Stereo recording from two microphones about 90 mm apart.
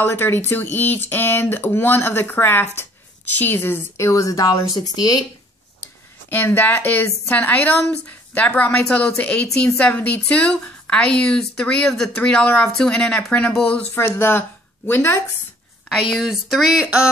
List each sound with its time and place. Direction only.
0.0 s speech: 25° left (ahead or behind); by 5.2 s 45° left (ahead or behind)
6.3 s speech: 20° left (ahead or behind)
13.9 s speech: 25° left (ahead or behind)
15.9 s speech: 5° right (ahead or behind)